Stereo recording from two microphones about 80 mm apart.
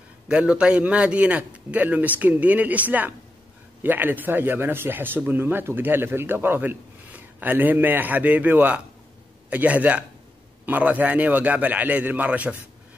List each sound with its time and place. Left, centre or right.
0.3 s a man's voice: centre